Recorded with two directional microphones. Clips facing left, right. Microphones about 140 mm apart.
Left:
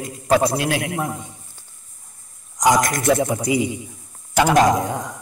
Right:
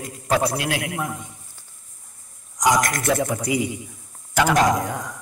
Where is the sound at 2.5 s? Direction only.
25° left (ahead or behind).